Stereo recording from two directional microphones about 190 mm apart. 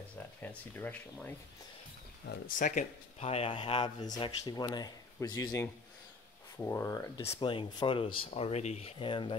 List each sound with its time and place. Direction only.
0.4 s speech: 10° left (ahead or behind)
2.2 s speech: 45° left (ahead or behind); by 7.1 s 15° left (ahead or behind)
7.2 s speech: 25° left (ahead or behind)